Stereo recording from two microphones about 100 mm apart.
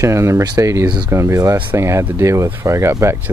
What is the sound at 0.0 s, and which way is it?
Speech, 30° right (ahead or behind).